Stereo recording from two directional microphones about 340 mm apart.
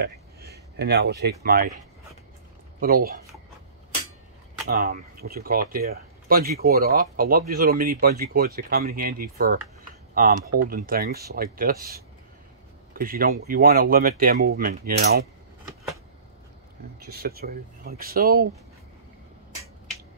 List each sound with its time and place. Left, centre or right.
0.0 s speech: right
2.8 s speech: right
4.6 s speech: right
17.0 s speech: right